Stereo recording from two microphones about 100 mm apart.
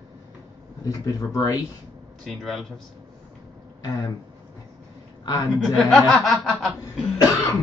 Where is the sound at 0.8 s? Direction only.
40° left (ahead or behind).